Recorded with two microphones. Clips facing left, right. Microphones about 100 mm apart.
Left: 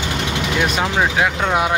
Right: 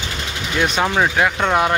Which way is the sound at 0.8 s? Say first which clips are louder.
Right 3 dB; centre (ahead or behind).